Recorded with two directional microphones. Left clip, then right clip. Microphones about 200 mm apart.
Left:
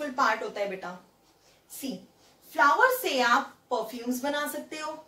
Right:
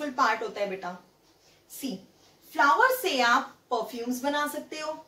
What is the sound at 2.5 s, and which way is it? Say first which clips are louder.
A woman's voice: even; 15° left (ahead or behind).